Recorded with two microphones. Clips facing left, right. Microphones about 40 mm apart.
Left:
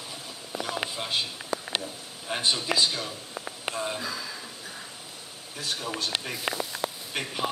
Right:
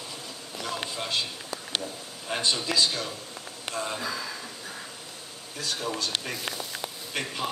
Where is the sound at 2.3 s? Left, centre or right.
Centre.